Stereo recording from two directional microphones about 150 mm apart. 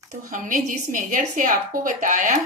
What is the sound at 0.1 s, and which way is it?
A woman's voice, 55° right (ahead or behind).